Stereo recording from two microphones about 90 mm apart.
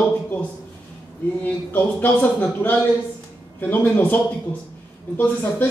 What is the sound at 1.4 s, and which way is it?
Speech, 20° left (ahead or behind).